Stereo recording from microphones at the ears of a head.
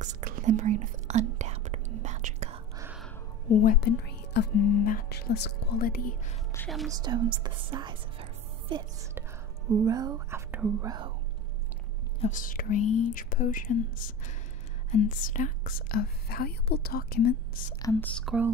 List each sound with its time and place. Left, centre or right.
0.0 s whispering: right
3.4 s speech: left
6.9 s speech: right
12.2 s speech: left